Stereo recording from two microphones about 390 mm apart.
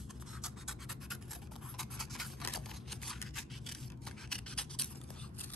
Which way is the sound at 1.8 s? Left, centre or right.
Centre.